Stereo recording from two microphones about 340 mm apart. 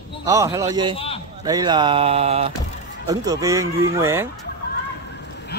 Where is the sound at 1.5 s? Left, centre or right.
Centre.